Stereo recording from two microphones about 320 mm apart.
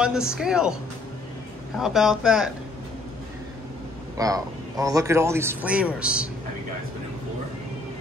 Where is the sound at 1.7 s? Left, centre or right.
Centre.